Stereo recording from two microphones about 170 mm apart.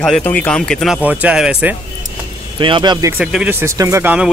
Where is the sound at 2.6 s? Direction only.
30° right (ahead or behind).